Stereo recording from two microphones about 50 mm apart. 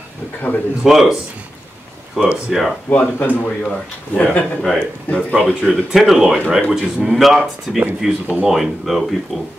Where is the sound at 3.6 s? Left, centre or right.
Left.